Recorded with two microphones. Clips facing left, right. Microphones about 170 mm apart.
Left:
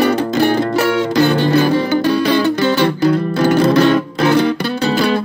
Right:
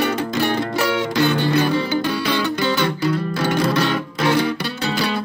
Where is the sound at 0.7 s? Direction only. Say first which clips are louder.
Left 5 dB; 60° left (ahead or behind).